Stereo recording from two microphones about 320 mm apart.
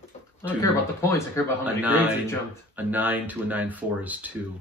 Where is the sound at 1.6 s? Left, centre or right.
Centre.